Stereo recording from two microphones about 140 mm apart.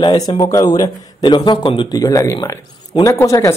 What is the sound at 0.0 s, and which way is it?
A man's voice, 30° left (ahead or behind).